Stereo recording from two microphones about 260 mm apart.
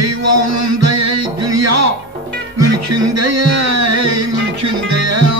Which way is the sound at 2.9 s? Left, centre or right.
Right.